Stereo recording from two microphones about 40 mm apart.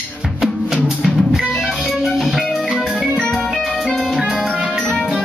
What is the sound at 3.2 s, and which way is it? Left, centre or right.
Music, centre.